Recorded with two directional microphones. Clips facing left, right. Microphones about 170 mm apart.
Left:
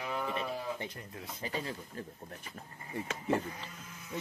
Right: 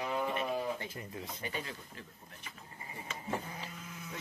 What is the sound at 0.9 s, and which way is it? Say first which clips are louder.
Speech: right 3 dB; 5° right (ahead or behind).